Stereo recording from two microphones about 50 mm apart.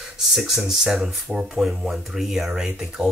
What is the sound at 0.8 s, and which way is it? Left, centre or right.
Speech, centre.